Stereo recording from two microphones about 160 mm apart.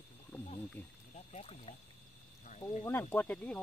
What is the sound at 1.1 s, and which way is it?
Speech, 40° left (ahead or behind).